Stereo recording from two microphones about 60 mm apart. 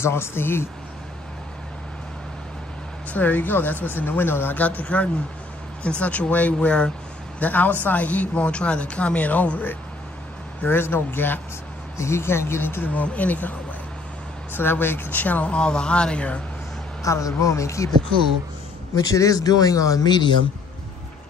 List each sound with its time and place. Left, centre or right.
0.0 s speech: left
3.1 s speech: left
12.0 s speech: left
14.5 s speech: left; by 16.3 s centre
17.0 s speech: left
18.9 s speech: left